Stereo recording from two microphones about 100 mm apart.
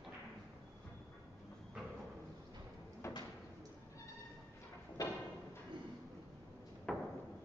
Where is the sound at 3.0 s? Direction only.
30° left (ahead or behind).